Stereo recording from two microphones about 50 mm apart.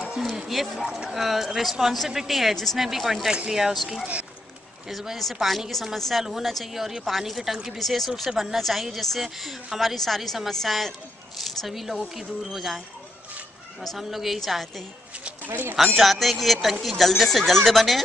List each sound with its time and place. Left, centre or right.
0.5 s speech: centre
2.8 s speech: centre
13.9 s speech: centre
15.4 s speech: right
16.0 s speech: centre